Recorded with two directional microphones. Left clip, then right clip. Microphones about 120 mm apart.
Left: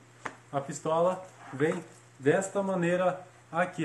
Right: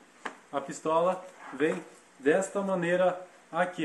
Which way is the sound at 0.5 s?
25° left (ahead or behind).